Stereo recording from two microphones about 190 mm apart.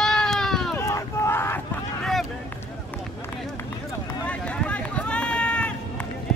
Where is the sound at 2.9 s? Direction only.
10° left (ahead or behind).